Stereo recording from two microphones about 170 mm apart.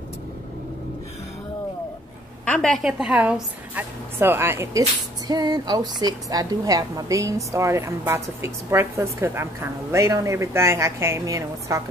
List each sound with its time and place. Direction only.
2.4 s a woman's voice: 5° left (ahead or behind); by 11.8 s 20° right (ahead or behind)